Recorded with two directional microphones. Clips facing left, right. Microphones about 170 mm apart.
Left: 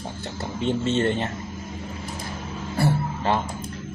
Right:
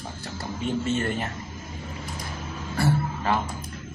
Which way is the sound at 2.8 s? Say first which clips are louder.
Left 1 dB; 30° left (ahead or behind).